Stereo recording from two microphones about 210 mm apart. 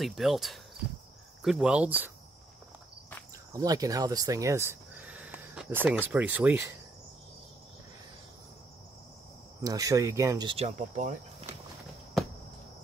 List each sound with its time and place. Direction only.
0.0 s speech: centre (ahead or behind)
3.5 s speech: 15° right (ahead or behind)
6.1 s cricket: 10° right (ahead or behind)
9.6 s cricket: 15° right (ahead or behind); by 11.1 s 35° right (ahead or behind)